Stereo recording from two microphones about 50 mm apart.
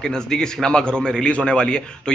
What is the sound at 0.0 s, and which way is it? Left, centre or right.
A man's voice, centre.